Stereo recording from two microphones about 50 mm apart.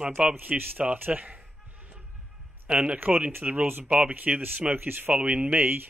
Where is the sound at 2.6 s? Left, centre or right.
Right.